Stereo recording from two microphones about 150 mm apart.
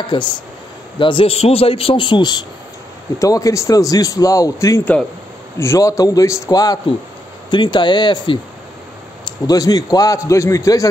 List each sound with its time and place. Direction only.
0.0 s a man's voice: 30° left (ahead or behind)
9.5 s a man's voice: 25° left (ahead or behind)